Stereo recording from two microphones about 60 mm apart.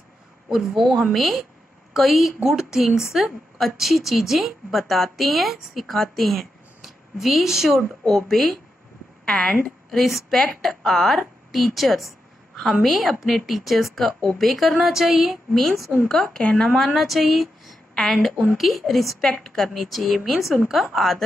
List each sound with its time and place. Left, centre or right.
0.5 s a woman's voice: centre
9.2 s a woman's voice: centre
9.8 s a woman's voice: centre
16.4 s speech: centre
16.7 s a woman's voice: centre